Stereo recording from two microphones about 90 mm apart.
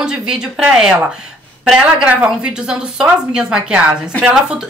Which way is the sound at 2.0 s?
15° right (ahead or behind).